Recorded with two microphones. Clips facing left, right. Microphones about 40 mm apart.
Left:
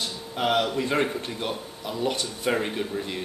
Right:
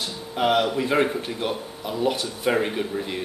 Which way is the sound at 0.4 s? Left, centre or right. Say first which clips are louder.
Right 3 dB; centre.